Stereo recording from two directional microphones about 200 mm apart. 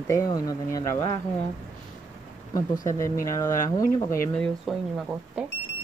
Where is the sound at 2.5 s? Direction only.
15° left (ahead or behind); by 5.4 s 5° right (ahead or behind).